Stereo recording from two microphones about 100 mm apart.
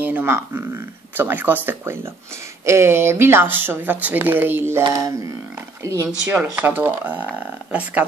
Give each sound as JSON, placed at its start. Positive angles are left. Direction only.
{"t": 0.0, "sound": "speech", "side_deg": -20}
{"t": 4.9, "sound": "speech", "side_deg": -35}
{"t": 6.3, "sound": "speech", "side_deg": -15}